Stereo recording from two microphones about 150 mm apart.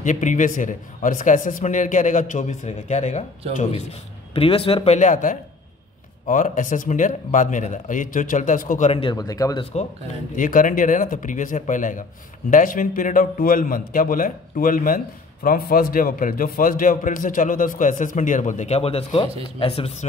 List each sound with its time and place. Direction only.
0.0 s a man's voice: 55° left (ahead or behind)
4.4 s a man's voice: 40° left (ahead or behind); by 8.9 s 60° left (ahead or behind)
8.9 s speech: 30° left (ahead or behind)
10.3 s a man's voice: 65° left (ahead or behind); by 20.1 s 40° left (ahead or behind)